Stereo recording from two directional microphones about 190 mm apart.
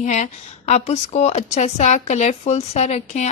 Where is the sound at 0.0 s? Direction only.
40° left (ahead or behind).